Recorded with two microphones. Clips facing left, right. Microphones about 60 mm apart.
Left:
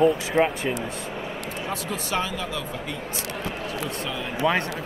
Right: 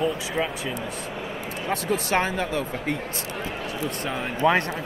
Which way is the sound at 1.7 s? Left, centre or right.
Right.